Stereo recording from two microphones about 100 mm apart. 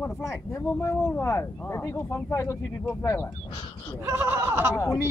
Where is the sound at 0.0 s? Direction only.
30° left (ahead or behind).